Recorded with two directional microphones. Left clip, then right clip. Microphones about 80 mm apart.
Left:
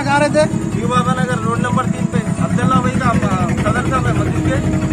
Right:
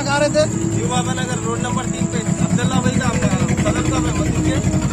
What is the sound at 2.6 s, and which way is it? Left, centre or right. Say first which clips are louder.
Speech: left 6 dB; right.